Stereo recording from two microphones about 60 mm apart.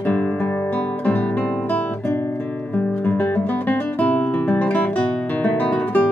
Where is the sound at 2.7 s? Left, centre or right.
Left.